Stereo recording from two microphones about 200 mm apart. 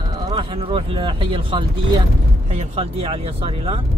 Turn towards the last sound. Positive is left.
turn(degrees=-25)  # may be behind; listen again after turning